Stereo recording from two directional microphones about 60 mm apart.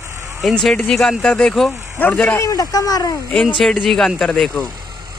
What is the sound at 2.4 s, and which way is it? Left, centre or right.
Speech, left.